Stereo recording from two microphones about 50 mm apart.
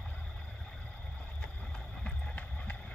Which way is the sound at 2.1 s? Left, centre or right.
Left.